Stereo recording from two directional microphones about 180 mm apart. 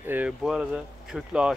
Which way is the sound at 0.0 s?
10° right (ahead or behind).